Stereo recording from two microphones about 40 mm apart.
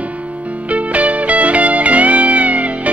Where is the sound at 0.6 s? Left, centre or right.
Right.